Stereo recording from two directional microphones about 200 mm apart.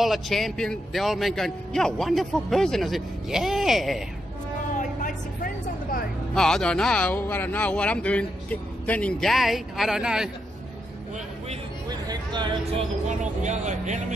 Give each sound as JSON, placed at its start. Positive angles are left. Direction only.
{"t": 0.0, "sound": "a man's voice", "side_deg": 0}
{"t": 4.7, "sound": "vehicle", "side_deg": 40}
{"t": 6.3, "sound": "a man's voice", "side_deg": 5}
{"t": 12.1, "sound": "speech", "side_deg": -25}
{"t": 13.2, "sound": "speech", "side_deg": -35}